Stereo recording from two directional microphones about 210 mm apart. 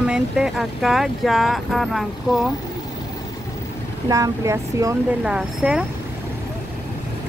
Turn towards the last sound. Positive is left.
turn(degrees=-5)  # may be behind; listen again after turning